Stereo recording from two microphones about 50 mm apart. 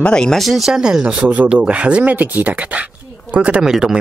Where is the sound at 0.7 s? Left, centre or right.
Centre.